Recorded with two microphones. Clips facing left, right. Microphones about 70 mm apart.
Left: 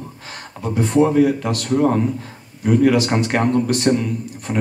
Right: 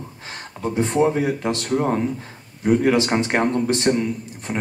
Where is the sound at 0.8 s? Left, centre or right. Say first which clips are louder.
Left 5 dB; right.